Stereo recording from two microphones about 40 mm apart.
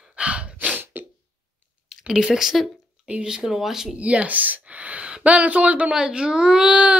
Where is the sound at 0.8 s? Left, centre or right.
Right.